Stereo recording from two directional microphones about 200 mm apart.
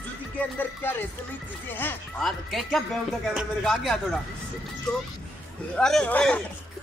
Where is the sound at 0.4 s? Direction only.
10° left (ahead or behind).